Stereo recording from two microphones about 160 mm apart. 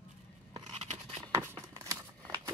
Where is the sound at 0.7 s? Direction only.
40° right (ahead or behind).